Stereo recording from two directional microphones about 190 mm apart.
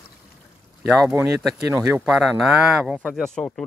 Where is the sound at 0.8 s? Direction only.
Centre (ahead or behind).